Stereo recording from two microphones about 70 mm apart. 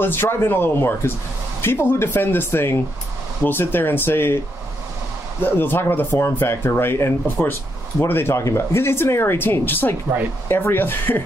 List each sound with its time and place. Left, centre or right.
0.0 s speech: left
5.4 s speech: left